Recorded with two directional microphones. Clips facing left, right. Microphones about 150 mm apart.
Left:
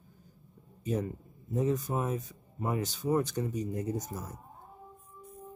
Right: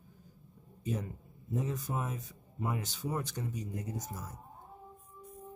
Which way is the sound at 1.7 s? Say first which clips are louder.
Left 6 dB; 40° left (ahead or behind).